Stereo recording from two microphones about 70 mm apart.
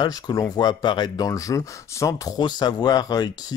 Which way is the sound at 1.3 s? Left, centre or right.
Left.